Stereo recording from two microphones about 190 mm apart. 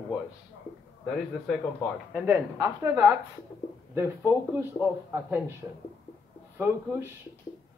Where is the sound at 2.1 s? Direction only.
10° right (ahead or behind).